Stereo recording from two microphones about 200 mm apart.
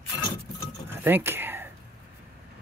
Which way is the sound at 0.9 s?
10° right (ahead or behind).